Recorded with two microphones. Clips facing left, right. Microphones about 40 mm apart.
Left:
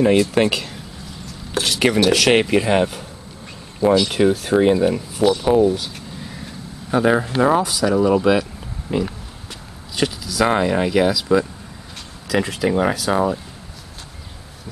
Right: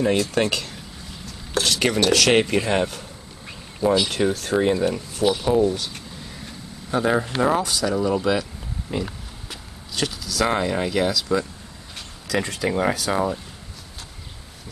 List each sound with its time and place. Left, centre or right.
0.0 s speech: centre
4.1 s speech: centre
5.7 s a sound: centre
7.4 s speech: centre